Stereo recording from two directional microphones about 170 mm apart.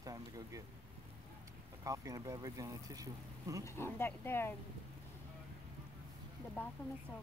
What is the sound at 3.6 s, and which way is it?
Speech, 15° left (ahead or behind).